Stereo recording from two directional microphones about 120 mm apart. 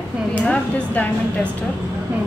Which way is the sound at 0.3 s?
15° left (ahead or behind).